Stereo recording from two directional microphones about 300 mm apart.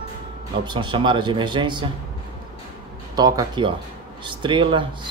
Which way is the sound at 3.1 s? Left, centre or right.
Centre.